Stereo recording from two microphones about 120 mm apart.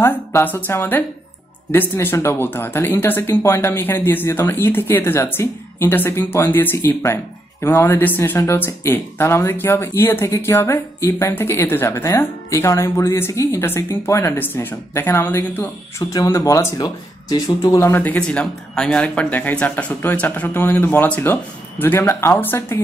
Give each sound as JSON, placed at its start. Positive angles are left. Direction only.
{"t": 0.0, "sound": "speech", "side_deg": 15}